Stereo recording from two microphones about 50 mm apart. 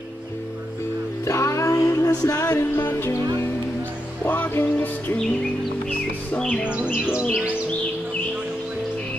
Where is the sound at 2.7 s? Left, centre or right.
Left.